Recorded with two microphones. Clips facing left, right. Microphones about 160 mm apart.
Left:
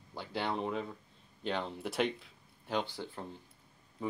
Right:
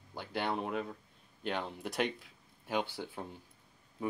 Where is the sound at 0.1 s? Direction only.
5° right (ahead or behind).